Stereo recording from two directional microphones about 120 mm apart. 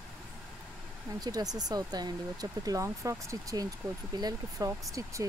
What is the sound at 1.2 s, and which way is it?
Speech, 30° right (ahead or behind).